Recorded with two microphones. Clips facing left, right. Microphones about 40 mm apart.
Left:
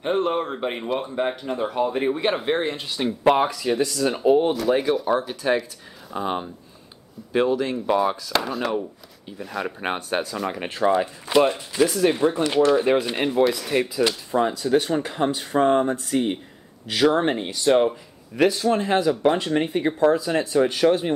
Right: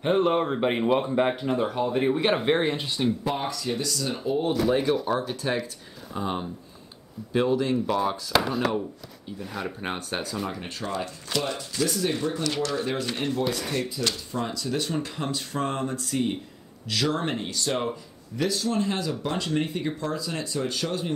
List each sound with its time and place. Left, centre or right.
0.0 s speech: centre
1.8 s speech: centre
3.3 s speech: left
3.6 s speech: left
4.6 s speech: centre
6.1 s speech: left
7.4 s speech: centre
8.3 s speech: centre
9.8 s speech: left
10.0 s speech: centre
10.7 s speech: left